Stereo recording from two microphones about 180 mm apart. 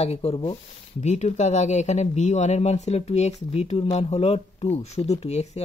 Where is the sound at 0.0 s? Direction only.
35° left (ahead or behind).